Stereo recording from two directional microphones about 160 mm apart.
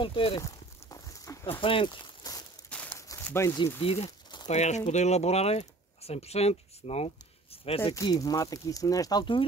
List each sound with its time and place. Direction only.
0.0 s speech: 35° left (ahead or behind)
0.4 s walk: 20° left (ahead or behind)
1.6 s a sound: 35° left (ahead or behind)
2.7 s crumpling: 10° left (ahead or behind)
3.1 s speech: 15° left (ahead or behind)
3.8 s a sound: 35° left (ahead or behind)
4.5 s speech: 45° left (ahead or behind)
7.9 s speech: 25° left (ahead or behind)